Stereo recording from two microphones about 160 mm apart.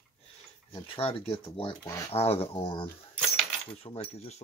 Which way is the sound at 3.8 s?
40° left (ahead or behind).